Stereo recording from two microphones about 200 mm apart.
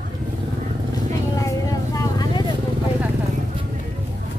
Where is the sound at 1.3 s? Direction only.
15° left (ahead or behind).